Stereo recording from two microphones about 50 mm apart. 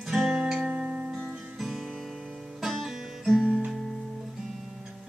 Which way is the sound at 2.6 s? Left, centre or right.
Centre.